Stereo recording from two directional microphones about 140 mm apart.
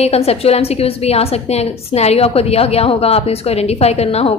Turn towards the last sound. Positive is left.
turn(degrees=50)  # may be behind; listen again after turning